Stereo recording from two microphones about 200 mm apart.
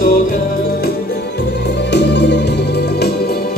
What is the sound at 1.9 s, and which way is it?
Music, 60° left (ahead or behind).